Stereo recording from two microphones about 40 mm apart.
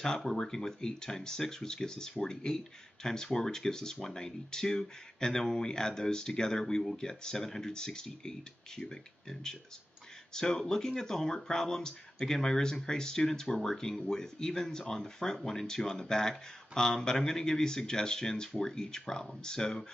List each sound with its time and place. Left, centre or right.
0.0 s speech: centre